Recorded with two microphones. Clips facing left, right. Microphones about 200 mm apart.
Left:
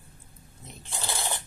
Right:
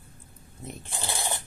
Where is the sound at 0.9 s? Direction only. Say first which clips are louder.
Even; 15° right (ahead or behind).